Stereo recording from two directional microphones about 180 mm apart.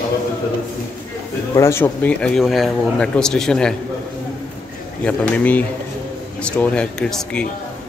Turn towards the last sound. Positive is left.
turn(degrees=5)  # may be behind; listen again after turning